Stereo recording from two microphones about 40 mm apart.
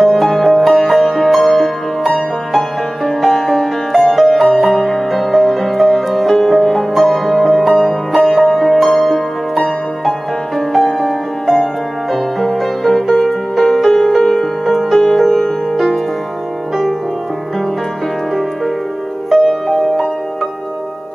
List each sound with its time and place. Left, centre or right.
0.0 s music: centre
13.8 s music: centre
14.1 s music: centre
19.3 s music: centre